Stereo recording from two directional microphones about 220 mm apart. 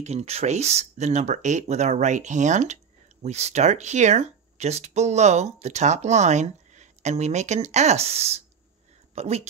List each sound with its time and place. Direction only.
0.0 s speech: 30° right (ahead or behind)